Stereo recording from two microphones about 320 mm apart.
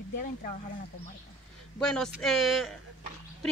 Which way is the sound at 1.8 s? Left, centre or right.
Centre.